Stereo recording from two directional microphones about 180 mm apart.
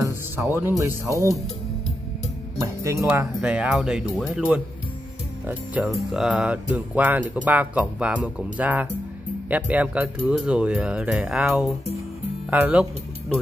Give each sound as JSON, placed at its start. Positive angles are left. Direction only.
{"t": 0.0, "sound": "speech", "side_deg": -15}
{"t": 2.8, "sound": "speech", "side_deg": -15}
{"t": 5.9, "sound": "speech", "side_deg": 0}